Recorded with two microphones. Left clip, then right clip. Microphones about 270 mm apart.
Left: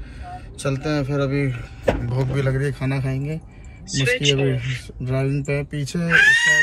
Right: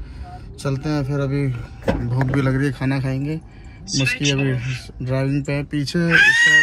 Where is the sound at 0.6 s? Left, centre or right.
Centre.